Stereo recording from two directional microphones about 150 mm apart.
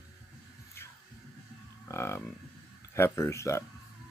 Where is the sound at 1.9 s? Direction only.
15° left (ahead or behind).